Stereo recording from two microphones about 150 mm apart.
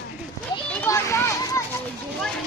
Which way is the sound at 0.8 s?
20° left (ahead or behind).